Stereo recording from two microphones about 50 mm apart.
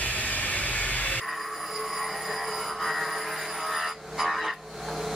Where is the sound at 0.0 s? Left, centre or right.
Left.